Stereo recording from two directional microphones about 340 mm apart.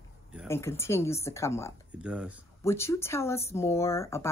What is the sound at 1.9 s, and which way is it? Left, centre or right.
Speech, centre.